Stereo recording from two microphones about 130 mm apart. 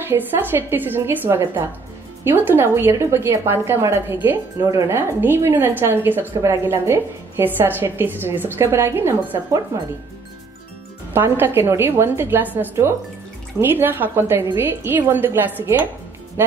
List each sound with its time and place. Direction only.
0.0 s a woman's voice: 15° right (ahead or behind)
11.1 s a woman's voice: 15° right (ahead or behind)